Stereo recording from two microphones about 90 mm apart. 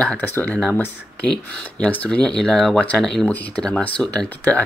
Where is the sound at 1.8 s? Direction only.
15° left (ahead or behind).